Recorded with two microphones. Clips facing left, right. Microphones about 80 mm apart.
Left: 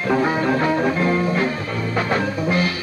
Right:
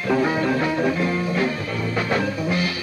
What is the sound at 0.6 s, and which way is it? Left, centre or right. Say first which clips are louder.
Music: left 3 dB; left.